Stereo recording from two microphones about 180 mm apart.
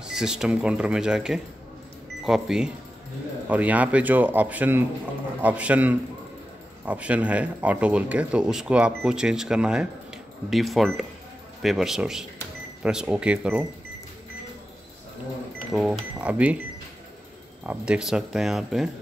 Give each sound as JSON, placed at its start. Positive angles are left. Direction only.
{"t": 0.0, "sound": "a man's voice", "side_deg": -5}
{"t": 15.7, "sound": "a man's voice", "side_deg": -5}
{"t": 17.6, "sound": "speech", "side_deg": -5}